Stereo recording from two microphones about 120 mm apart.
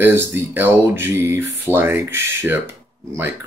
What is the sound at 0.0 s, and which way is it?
Speech, 20° right (ahead or behind).